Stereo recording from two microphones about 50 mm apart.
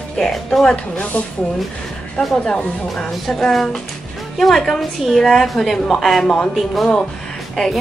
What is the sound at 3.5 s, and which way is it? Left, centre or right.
A woman's voice, centre.